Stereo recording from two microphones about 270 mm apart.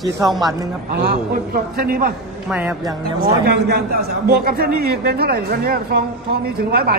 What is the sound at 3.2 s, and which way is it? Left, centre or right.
A man's voice, right.